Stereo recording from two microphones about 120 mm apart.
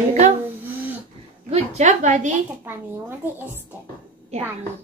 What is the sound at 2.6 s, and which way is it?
Speech, 20° right (ahead or behind).